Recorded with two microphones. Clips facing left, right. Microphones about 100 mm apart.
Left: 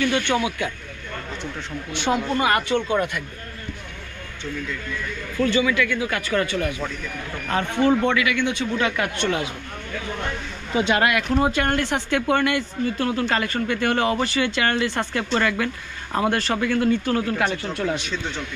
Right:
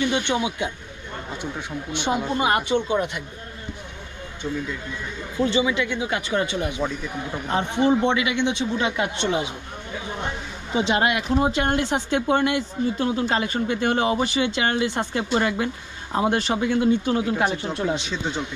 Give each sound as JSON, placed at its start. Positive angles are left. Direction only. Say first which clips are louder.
{"t": 0.0, "sound": "speech", "louder": "left 1 dB", "side_deg": -20}
{"t": 2.0, "sound": "speech", "louder": "left 2 dB", "side_deg": -10}
{"t": 4.6, "sound": "speech", "louder": "even", "side_deg": -25}
{"t": 11.2, "sound": "speech", "louder": "even", "side_deg": 0}
{"t": 11.5, "sound": "speech", "louder": "even", "side_deg": -15}
{"t": 18.1, "sound": "speech", "louder": "right 2 dB", "side_deg": -35}